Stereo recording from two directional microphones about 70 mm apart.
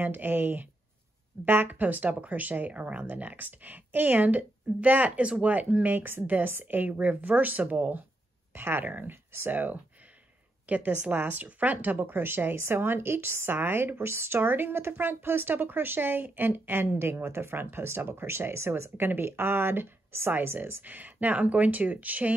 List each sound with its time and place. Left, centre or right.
0.0 s speech: right
8.5 s speech: right